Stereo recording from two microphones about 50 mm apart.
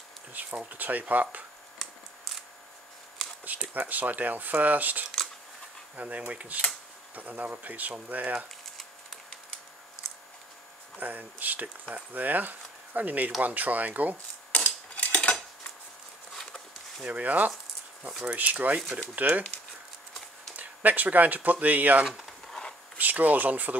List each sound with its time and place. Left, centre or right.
0.3 s a sound: right
0.7 s speech: right
3.7 s speech: right
11.0 s speech: right
14.5 s a sound: left
17.0 s speech: right
20.5 s speech: right
22.0 s a sound: centre
22.9 s speech: right